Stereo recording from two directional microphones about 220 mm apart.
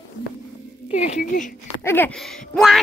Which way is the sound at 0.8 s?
30° left (ahead or behind).